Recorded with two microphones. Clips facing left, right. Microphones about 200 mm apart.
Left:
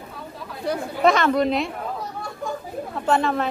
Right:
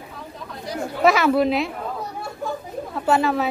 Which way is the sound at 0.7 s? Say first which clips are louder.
Left 5 dB; 60° left (ahead or behind).